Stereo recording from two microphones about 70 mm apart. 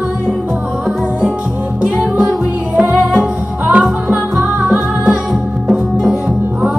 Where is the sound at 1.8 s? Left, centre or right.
Centre.